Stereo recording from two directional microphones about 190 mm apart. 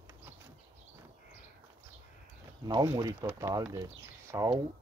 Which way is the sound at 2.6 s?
20° right (ahead or behind).